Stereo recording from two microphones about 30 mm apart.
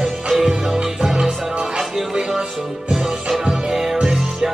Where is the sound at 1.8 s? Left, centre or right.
Centre.